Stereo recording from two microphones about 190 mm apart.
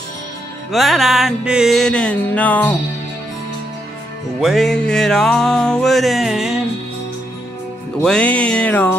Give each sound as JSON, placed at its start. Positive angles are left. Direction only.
{"t": 0.7, "sound": "music", "side_deg": 0}
{"t": 4.4, "sound": "music", "side_deg": 0}
{"t": 8.0, "sound": "music", "side_deg": 5}